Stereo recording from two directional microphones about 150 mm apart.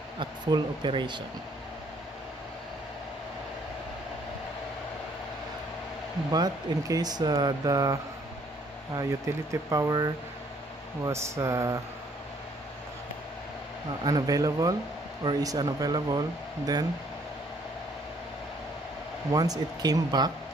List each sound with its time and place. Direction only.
0.2 s speech: 30° right (ahead or behind)
6.3 s speech: 25° right (ahead or behind)
14.0 s speech: 25° right (ahead or behind)
19.3 s speech: 25° right (ahead or behind)